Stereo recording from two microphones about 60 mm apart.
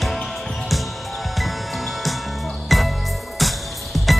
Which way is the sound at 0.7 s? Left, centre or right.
Centre.